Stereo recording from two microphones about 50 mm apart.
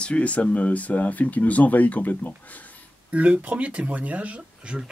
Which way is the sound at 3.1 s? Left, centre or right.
Right.